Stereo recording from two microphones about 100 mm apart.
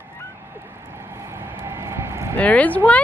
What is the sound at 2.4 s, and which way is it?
Speech, 15° left (ahead or behind).